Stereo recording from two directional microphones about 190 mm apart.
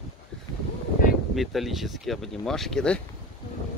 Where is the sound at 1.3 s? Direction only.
Centre (ahead or behind).